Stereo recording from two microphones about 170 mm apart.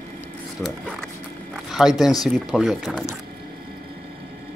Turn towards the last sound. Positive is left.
turn(degrees=-5)  # may be behind; listen again after turning